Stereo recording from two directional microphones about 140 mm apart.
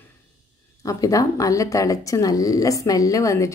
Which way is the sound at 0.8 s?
25° left (ahead or behind).